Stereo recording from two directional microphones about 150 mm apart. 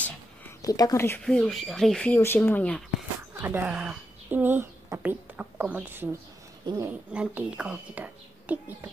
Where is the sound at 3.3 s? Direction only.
10° right (ahead or behind).